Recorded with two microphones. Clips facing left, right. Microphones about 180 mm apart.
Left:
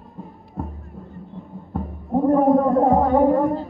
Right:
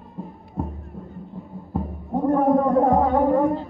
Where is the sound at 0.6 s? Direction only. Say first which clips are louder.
Right 2 dB; 15° right (ahead or behind).